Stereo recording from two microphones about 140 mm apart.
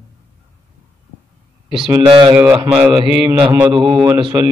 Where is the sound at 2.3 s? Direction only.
15° right (ahead or behind).